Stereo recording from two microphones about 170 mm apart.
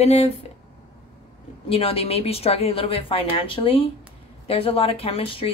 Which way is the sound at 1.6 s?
35° left (ahead or behind).